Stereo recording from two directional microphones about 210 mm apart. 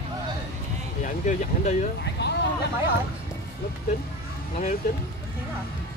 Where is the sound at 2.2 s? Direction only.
50° left (ahead or behind).